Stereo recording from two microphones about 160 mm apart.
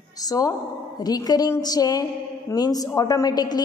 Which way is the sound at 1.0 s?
25° left (ahead or behind).